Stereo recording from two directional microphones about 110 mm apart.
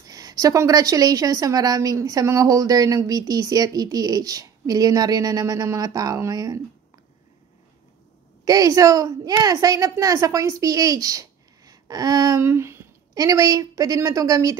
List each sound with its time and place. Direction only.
0.0 s a woman's voice: 35° right (ahead or behind)
8.5 s a woman's voice: 35° right (ahead or behind)